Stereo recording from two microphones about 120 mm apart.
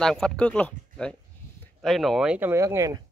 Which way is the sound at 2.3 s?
20° right (ahead or behind).